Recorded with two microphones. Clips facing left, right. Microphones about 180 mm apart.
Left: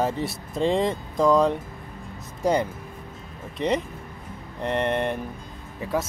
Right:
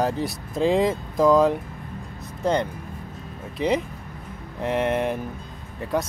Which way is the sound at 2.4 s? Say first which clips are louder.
Even; 10° left (ahead or behind).